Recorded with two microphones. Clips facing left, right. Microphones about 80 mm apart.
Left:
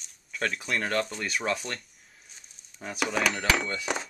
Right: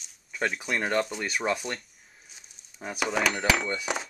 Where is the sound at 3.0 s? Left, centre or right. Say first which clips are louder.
Right 1 dB; centre.